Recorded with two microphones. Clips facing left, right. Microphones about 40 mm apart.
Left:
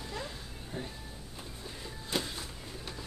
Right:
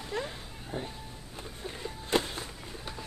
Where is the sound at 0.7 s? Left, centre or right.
Right.